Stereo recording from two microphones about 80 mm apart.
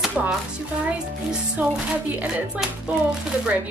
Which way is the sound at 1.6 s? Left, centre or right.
Right.